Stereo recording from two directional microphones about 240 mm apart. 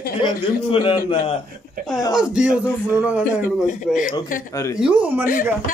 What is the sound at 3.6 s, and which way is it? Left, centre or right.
Speech, left.